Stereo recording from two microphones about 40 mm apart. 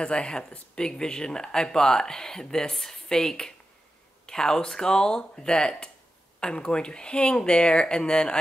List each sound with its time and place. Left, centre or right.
0.0 s speech: left